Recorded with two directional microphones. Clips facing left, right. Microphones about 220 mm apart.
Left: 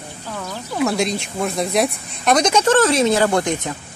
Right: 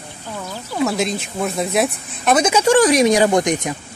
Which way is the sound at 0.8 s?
Centre (ahead or behind).